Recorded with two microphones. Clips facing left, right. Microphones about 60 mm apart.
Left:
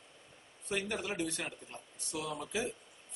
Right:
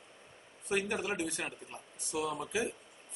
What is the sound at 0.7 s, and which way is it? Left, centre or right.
Speech, centre.